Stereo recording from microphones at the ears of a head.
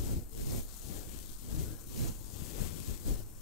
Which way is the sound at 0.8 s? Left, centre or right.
Left.